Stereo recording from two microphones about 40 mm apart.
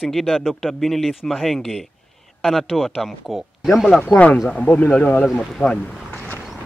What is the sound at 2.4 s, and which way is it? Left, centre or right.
Speech, centre.